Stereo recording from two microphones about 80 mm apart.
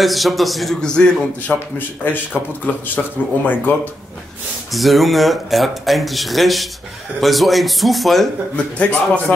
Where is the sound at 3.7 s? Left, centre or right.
Left.